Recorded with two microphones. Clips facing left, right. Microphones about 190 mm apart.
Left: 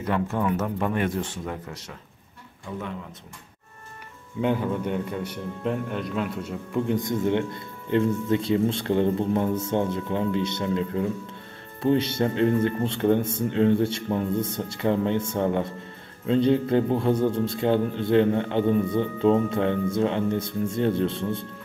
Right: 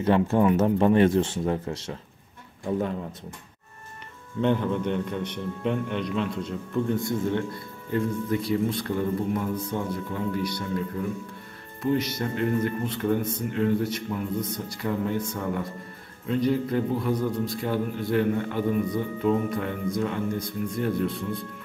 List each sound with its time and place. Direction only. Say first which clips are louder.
0.0 s speech: right 5 dB; 30° right (ahead or behind)
4.4 s a man's voice: right 1 dB; 5° left (ahead or behind); by 21.5 s 25° left (ahead or behind)